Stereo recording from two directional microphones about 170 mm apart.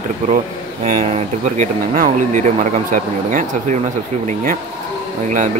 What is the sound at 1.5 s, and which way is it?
Speech, 50° right (ahead or behind).